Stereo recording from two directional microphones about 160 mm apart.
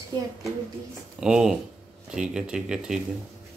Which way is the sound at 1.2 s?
5° right (ahead or behind).